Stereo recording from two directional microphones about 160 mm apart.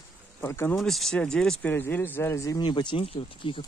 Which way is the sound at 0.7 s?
Centre (ahead or behind).